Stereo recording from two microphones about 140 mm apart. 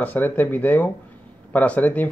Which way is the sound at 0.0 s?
15° left (ahead or behind).